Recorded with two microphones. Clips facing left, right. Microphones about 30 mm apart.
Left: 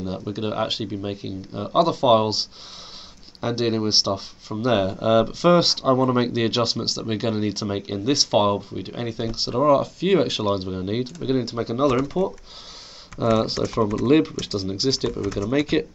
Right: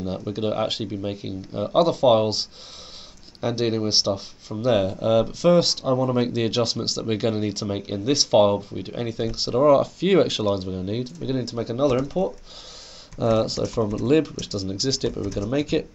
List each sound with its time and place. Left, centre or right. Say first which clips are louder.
0.0 s speech: right 1 dB; centre
10.5 s speech: left 1 dB; centre
13.2 s speech: left 1 dB; centre
14.0 s speech: left 2 dB; left
14.8 s speech: left 1 dB; left